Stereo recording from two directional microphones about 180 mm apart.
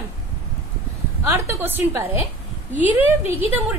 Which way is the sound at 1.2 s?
15° right (ahead or behind).